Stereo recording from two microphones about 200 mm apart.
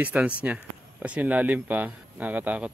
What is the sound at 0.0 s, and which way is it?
Speech, 5° right (ahead or behind).